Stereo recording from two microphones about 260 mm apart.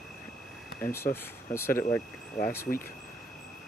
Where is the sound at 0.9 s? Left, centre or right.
Centre.